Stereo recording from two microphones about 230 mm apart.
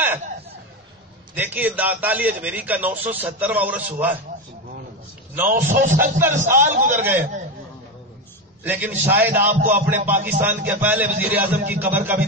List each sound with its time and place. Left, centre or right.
1.3 s a man's voice: centre
5.3 s a man's voice: centre
5.7 s speech: right
6.4 s a man's voice: centre
8.6 s a man's voice: centre
9.6 s speech: right
9.8 s a man's voice: centre